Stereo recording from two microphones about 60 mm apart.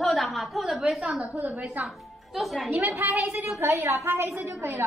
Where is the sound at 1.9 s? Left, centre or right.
Centre.